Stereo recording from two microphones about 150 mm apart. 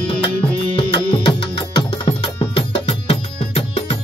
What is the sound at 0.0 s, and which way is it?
Music, 35° left (ahead or behind).